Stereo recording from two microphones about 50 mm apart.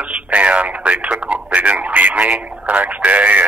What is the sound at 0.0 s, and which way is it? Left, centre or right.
Radio, right.